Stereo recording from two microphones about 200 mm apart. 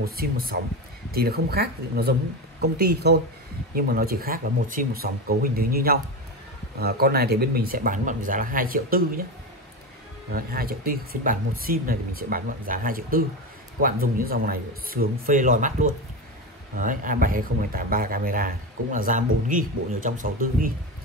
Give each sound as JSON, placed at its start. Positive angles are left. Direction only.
{"t": 0.0, "sound": "speech", "side_deg": -50}
{"t": 10.3, "sound": "speech", "side_deg": -45}